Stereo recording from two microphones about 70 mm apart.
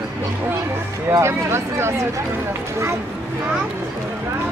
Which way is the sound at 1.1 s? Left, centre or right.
Right.